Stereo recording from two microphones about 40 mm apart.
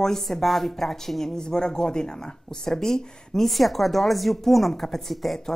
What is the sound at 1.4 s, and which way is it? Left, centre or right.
A woman's voice, centre.